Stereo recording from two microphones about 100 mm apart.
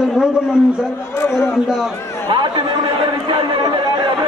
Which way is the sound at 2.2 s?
50° right (ahead or behind).